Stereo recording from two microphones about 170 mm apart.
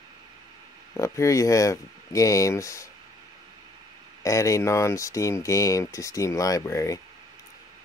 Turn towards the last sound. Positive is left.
turn(degrees=20)  # may be behind; listen again after turning